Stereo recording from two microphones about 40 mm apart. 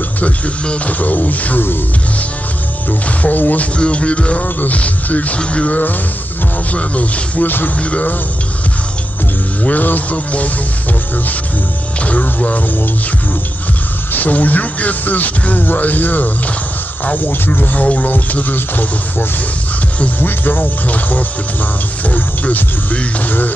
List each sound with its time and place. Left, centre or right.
0.8 s speech: left
2.9 s speech: left
3.7 s speech: left
7.4 s speech: left
7.8 s speech: left
9.6 s speech: left
12.0 s speech: left
14.1 s speech: left
17.7 s speech: left